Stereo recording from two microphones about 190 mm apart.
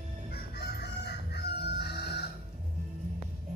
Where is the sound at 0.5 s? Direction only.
60° left (ahead or behind).